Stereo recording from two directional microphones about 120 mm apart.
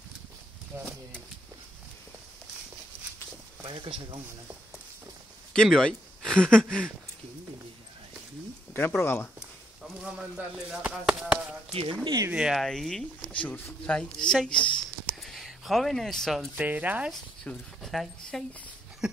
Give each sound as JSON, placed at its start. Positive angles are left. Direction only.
{"t": 0.7, "sound": "speech", "side_deg": -20}
{"t": 3.6, "sound": "speech", "side_deg": -40}
{"t": 5.5, "sound": "speech", "side_deg": 5}
{"t": 9.0, "sound": "speech", "side_deg": 20}
{"t": 10.0, "sound": "speech", "side_deg": -10}
{"t": 11.7, "sound": "speech", "side_deg": -45}
{"t": 12.3, "sound": "speech", "side_deg": -5}
{"t": 15.0, "sound": "a sound", "side_deg": 0}
{"t": 16.5, "sound": "speech", "side_deg": -15}
{"t": 17.1, "sound": "speech", "side_deg": 5}